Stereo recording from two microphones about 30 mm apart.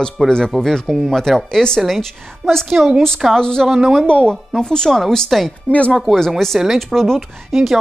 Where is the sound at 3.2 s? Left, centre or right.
Centre.